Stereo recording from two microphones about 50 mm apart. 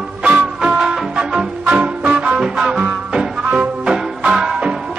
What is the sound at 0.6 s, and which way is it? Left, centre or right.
Music, centre.